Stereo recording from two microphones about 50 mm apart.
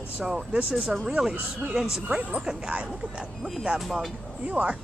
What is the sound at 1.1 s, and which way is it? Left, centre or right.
Speech, centre.